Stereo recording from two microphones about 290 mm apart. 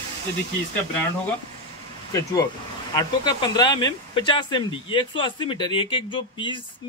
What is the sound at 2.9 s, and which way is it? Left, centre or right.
Speech, centre.